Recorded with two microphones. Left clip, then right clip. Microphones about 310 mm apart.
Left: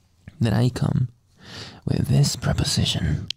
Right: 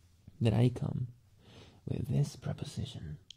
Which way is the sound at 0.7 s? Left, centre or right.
Left.